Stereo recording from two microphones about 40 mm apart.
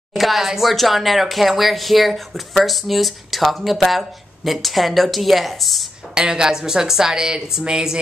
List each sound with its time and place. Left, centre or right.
0.1 s a woman's voice: centre
6.1 s a woman's voice: centre